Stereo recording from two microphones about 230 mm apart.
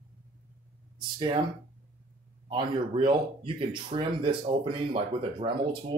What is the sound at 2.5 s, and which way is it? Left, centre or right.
Speech, right.